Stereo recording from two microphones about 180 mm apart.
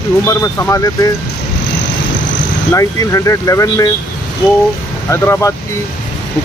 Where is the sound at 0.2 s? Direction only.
15° left (ahead or behind).